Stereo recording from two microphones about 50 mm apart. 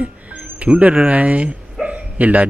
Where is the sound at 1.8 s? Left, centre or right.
Right.